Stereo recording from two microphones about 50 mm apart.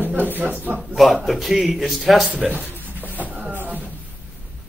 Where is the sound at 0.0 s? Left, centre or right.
Right.